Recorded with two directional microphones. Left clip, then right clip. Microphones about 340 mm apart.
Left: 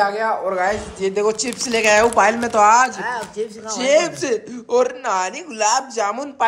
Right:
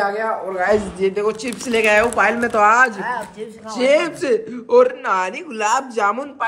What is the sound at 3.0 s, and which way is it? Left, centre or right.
Speech, left.